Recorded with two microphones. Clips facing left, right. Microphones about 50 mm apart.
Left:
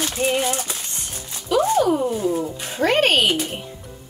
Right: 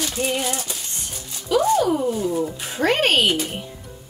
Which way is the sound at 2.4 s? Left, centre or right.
Centre.